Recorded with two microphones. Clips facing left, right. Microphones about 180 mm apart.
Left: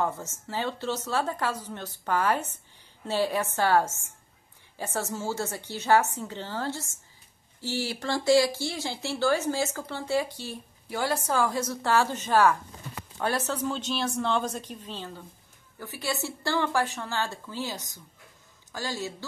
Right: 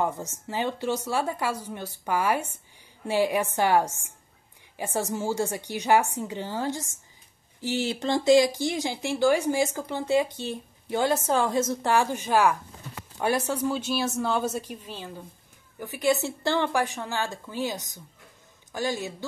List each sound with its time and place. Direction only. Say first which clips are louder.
0.0 s speech: right 2 dB; 15° right (ahead or behind)